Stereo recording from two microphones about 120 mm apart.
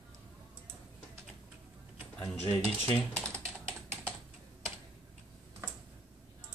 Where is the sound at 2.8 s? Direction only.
10° left (ahead or behind).